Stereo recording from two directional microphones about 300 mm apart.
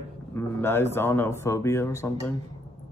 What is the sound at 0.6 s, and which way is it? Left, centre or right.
Speech, centre.